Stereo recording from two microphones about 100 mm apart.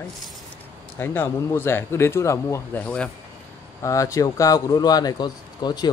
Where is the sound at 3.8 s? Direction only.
35° left (ahead or behind).